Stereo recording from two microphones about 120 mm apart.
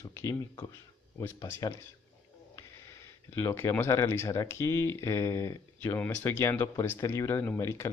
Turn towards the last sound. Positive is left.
turn(degrees=20)  # may be behind; listen again after turning